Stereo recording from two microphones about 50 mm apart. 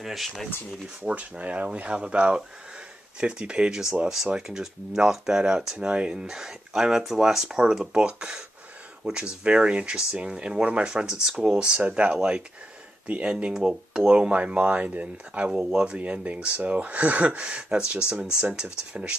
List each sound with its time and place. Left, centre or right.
0.0 s speech: centre
1.0 s speech: right
13.3 s speech: centre
15.5 s speech: centre